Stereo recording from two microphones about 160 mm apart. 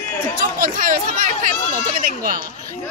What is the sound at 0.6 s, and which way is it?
A woman's voice, 65° right (ahead or behind).